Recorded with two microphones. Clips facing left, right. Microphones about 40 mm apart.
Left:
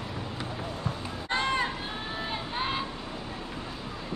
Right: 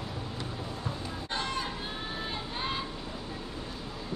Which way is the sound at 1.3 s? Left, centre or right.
Left.